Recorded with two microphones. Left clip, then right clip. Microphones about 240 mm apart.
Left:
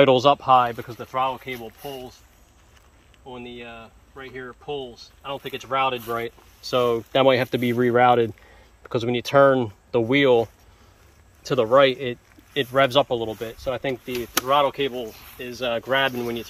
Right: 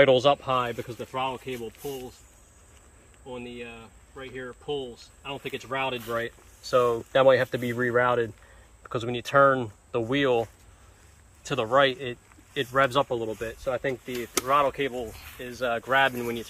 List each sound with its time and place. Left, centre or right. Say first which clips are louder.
0.1 s speech: left 5 dB; left
4.2 s speech: left 2 dB; centre
6.6 s speech: left 2 dB; left
11.4 s speech: left 5 dB; left